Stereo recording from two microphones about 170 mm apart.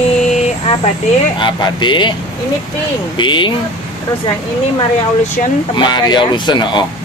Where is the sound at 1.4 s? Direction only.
25° left (ahead or behind).